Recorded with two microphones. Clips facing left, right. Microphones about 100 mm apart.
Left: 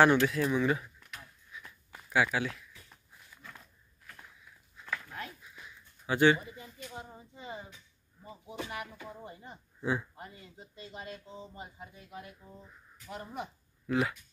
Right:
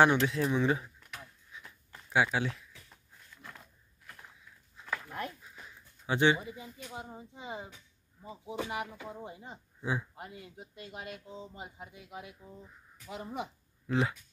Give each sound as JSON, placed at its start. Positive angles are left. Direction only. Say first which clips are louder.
{"t": 0.0, "sound": "speech", "louder": "left 1 dB", "side_deg": -20}
{"t": 2.0, "sound": "speech", "louder": "even", "side_deg": -25}
{"t": 5.1, "sound": "a sound", "louder": "right 4 dB", "side_deg": -40}
{"t": 6.0, "sound": "speech", "louder": "left 2 dB", "side_deg": -20}
{"t": 13.8, "sound": "speech", "louder": "even", "side_deg": -30}